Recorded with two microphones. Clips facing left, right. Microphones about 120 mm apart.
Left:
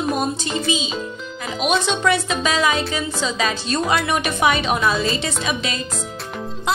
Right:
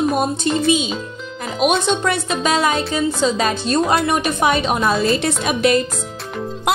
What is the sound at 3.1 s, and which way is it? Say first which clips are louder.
A woman's voice: right 4 dB; 45° right (ahead or behind).